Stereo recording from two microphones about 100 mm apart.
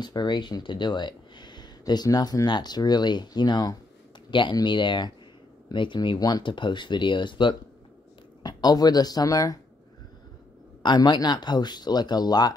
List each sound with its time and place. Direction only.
0.0 s speech: 50° left (ahead or behind)
10.8 s speech: 45° left (ahead or behind)